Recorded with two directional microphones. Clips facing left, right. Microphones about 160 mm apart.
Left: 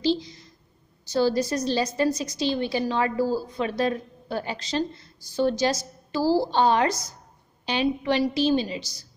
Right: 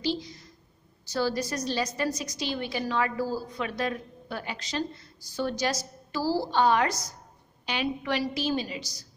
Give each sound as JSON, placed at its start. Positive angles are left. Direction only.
{"t": 0.0, "sound": "a woman's voice", "side_deg": 25}